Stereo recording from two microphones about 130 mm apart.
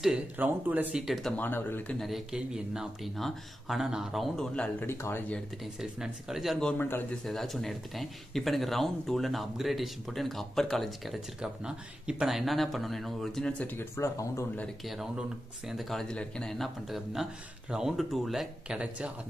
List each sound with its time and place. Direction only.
0.4 s speech: 15° right (ahead or behind)
1.0 s speech: centre (ahead or behind)
1.3 s speech: 15° left (ahead or behind)
2.0 s speech: centre (ahead or behind)
4.7 s speech: 20° left (ahead or behind)
5.3 s speech: centre (ahead or behind); by 7.1 s 15° left (ahead or behind)
7.2 s speech: centre (ahead or behind); by 14.4 s 20° left (ahead or behind)
14.9 s speech: 5° right (ahead or behind)